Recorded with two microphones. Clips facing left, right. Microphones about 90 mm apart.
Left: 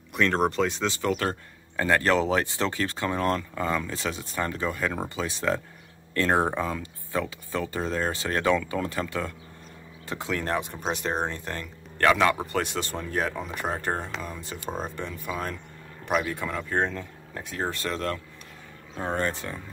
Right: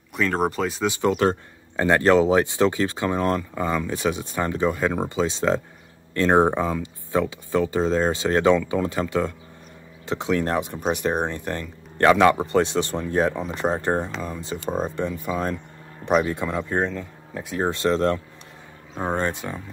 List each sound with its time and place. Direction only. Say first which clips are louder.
0.1 s speech: right 1 dB; 5° right (ahead or behind)
0.9 s speech: right 6 dB; 20° right (ahead or behind)
16.8 s speech: right 3 dB; 5° right (ahead or behind)
17.6 s speech: right 9 dB; 20° right (ahead or behind)